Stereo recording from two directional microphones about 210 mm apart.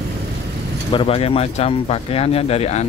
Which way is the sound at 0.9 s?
25° left (ahead or behind).